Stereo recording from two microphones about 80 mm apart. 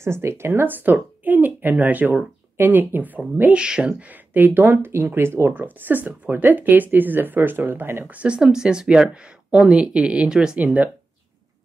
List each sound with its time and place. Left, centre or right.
0.0 s speech: right; by 3.9 s centre
4.1 s speech: right